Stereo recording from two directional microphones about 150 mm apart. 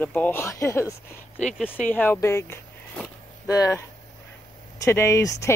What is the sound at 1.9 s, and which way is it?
Speech, 15° left (ahead or behind).